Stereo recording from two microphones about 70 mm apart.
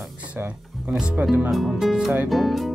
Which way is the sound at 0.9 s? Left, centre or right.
Centre.